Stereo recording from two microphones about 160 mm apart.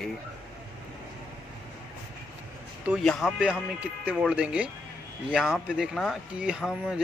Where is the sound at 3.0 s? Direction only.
5° left (ahead or behind).